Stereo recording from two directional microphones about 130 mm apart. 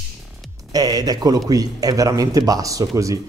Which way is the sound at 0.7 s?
30° right (ahead or behind).